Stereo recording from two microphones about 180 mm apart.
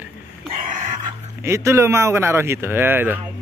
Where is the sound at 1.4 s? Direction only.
15° right (ahead or behind).